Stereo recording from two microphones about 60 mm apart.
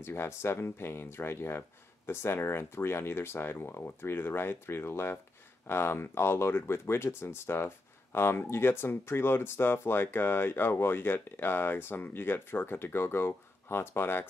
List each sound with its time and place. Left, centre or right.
0.0 s speech: left